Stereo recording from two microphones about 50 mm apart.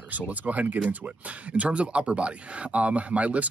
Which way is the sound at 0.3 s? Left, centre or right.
Right.